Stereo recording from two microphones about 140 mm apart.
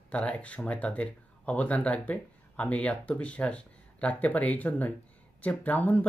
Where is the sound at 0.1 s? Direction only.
10° left (ahead or behind).